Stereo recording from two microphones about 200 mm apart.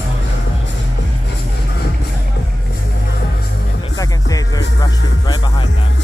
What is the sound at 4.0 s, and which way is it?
Music, 20° left (ahead or behind).